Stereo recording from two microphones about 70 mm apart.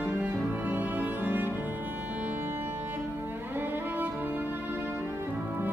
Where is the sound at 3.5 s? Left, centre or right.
Right.